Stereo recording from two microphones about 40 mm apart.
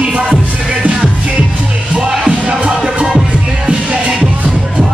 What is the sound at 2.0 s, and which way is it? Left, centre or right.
Music, right.